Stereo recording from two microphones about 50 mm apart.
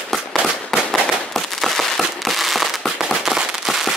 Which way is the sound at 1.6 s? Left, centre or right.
Centre.